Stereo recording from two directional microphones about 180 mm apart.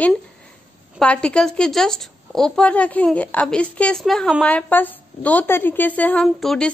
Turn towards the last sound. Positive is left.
turn(degrees=0)  # may be behind; listen again after turning